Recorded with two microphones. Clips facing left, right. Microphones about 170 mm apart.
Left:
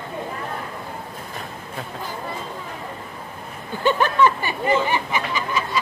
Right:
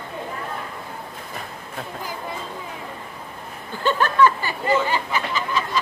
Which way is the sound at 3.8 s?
15° left (ahead or behind).